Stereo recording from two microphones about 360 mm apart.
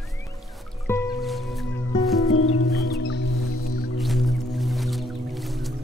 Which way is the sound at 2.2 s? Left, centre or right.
Left.